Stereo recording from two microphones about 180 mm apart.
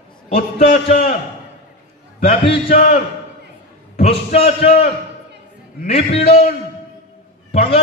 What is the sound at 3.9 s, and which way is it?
Speech, 35° left (ahead or behind).